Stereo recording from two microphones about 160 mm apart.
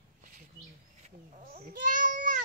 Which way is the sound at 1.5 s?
55° right (ahead or behind).